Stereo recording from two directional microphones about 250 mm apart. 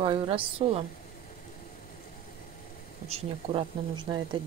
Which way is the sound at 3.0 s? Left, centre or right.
Right.